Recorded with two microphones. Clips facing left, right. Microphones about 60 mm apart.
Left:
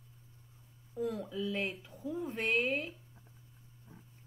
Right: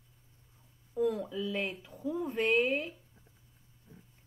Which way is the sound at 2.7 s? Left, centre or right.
Right.